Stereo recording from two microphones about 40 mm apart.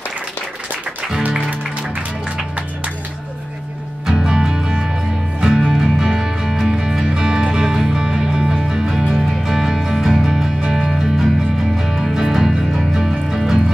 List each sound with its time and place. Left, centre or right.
4.1 s music: centre